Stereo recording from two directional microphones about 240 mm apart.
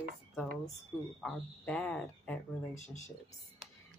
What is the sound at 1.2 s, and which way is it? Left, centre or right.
Speech, centre.